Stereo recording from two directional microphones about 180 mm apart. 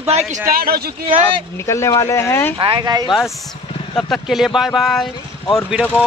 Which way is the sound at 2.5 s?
25° right (ahead or behind).